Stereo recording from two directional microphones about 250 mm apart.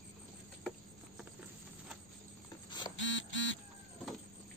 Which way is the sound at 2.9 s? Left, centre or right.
Left.